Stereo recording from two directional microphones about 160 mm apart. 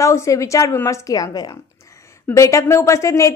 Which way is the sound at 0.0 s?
20° left (ahead or behind).